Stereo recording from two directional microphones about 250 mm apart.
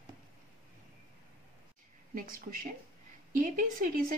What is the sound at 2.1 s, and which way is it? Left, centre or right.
Speech, right.